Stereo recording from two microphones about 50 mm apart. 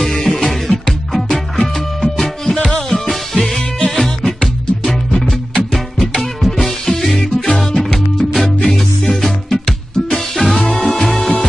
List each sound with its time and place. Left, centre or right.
0.0 s music: centre
2.9 s music: centre
11.1 s music: centre